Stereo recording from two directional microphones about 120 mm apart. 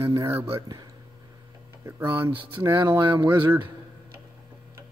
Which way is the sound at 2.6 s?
35° right (ahead or behind).